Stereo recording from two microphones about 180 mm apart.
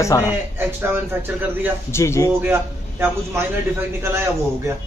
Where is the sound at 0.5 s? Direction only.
10° right (ahead or behind).